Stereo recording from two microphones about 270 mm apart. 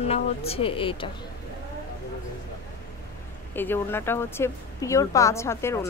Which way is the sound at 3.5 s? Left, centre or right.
Centre.